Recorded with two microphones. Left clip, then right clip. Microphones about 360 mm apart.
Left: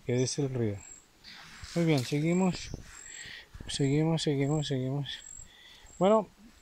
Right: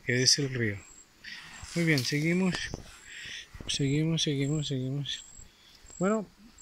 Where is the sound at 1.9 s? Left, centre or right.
Centre.